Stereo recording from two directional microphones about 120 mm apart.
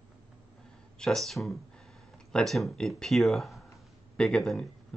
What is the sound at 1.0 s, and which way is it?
Speech, centre (ahead or behind).